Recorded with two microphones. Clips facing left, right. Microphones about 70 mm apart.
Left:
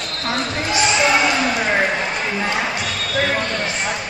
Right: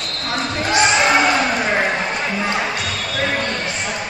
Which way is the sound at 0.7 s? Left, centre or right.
Right.